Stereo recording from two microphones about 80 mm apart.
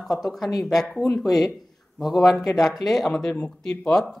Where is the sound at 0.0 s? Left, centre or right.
Centre.